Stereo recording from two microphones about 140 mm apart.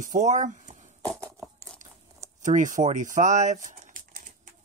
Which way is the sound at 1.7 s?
10° left (ahead or behind).